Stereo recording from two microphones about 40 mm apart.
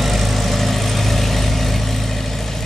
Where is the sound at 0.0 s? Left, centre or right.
Centre.